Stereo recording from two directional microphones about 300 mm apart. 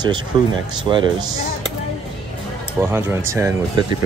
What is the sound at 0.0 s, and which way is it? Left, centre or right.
Speech, centre.